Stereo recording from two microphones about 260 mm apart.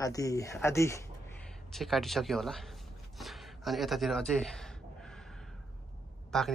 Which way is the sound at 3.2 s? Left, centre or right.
Centre.